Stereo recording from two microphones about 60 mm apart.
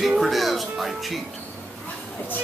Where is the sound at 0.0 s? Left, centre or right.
Centre.